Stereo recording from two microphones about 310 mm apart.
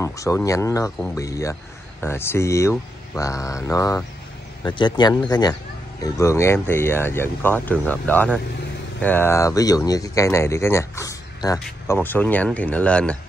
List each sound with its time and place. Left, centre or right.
0.0 s speech: centre